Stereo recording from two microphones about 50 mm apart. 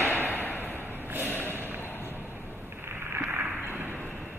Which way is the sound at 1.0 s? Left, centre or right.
Right.